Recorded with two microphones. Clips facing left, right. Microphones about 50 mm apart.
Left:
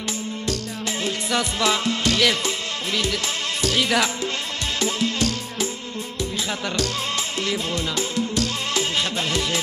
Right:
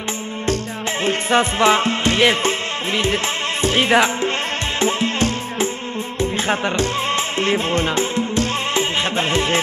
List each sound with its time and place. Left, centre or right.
1.0 s music: right